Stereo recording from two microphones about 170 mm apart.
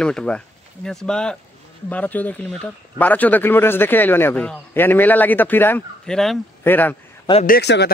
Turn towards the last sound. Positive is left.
turn(degrees=80)